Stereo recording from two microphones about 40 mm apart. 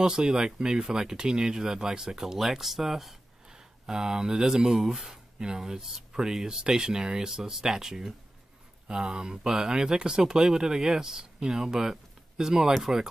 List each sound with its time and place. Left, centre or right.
0.0 s speech: centre